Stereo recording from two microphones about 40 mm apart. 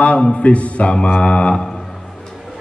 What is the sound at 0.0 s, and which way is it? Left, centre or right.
A man's voice, left.